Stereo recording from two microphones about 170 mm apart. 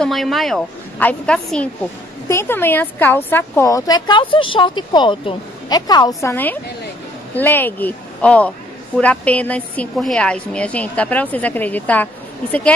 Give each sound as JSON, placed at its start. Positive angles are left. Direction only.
{"t": 0.0, "sound": "a woman's voice", "side_deg": 0}
{"t": 6.3, "sound": "a woman's voice", "side_deg": 10}